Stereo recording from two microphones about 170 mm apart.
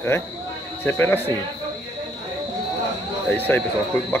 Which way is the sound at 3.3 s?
10° left (ahead or behind).